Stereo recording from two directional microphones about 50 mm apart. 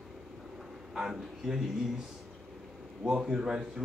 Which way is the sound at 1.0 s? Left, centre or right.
Centre.